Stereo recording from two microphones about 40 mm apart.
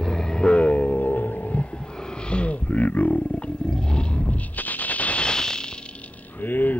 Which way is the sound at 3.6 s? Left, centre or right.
Left.